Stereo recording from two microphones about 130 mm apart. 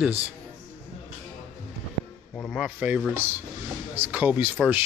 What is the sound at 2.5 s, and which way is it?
Speech, 5° right (ahead or behind).